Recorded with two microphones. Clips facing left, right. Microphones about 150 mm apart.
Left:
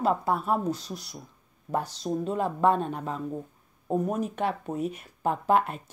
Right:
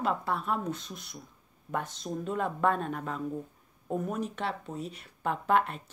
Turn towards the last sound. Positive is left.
turn(degrees=40)  # may be behind; listen again after turning